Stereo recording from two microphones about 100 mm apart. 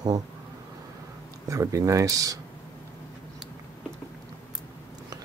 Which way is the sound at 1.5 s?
35° right (ahead or behind).